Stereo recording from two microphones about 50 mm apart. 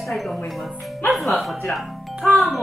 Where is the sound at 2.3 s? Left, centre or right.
Centre.